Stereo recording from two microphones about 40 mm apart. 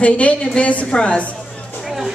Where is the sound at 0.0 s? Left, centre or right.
Left.